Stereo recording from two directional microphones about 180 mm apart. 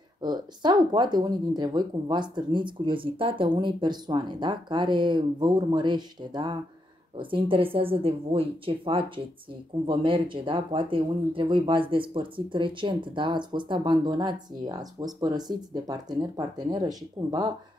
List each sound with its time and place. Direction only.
0.2 s speech: 25° right (ahead or behind)